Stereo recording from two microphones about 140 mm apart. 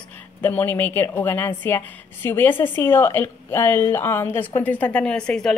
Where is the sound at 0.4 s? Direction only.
15° left (ahead or behind).